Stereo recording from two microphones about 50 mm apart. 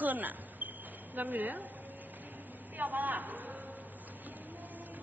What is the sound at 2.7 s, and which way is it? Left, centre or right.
Speech, right.